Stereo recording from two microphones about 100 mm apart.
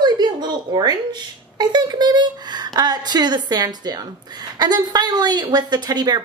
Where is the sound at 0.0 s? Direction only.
45° right (ahead or behind).